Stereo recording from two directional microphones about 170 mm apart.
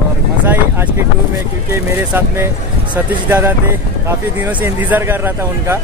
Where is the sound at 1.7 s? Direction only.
15° right (ahead or behind).